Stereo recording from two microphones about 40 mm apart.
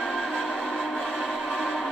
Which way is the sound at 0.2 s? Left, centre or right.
Centre.